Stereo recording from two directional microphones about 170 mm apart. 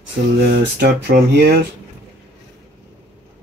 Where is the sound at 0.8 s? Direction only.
65° right (ahead or behind).